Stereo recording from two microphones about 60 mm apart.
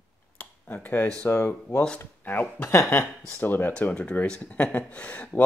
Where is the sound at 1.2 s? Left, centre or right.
Left.